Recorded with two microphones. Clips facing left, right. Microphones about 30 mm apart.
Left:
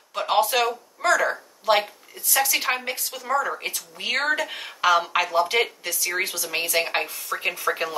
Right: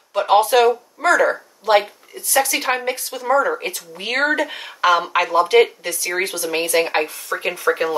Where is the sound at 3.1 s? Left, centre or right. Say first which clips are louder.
Right 7 dB; centre.